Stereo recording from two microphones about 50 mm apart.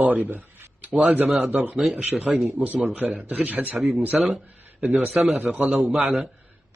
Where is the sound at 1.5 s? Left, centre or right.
Right.